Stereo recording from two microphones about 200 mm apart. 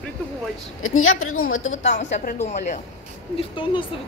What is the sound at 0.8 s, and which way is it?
Speech, 90° left.